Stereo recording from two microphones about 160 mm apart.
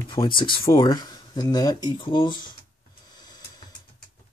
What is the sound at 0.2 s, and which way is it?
Speech, 15° left (ahead or behind).